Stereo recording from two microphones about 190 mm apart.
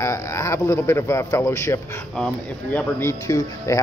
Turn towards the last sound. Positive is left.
turn(degrees=15)  # may be behind; listen again after turning